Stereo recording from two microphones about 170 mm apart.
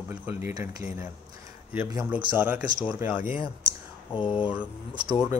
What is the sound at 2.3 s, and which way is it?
Speech, 10° right (ahead or behind).